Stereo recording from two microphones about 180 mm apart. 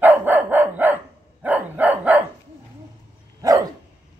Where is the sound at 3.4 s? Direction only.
20° right (ahead or behind).